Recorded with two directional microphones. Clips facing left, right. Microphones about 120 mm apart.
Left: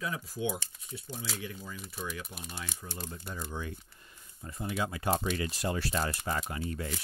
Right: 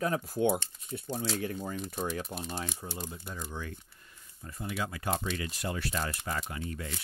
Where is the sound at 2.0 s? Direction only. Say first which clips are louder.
Right 6 dB; 35° right (ahead or behind).